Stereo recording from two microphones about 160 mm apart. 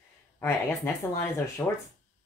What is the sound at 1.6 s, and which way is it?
Speech, 15° left (ahead or behind).